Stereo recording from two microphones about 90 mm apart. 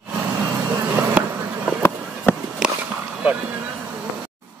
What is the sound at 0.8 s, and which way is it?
Bee, 25° right (ahead or behind).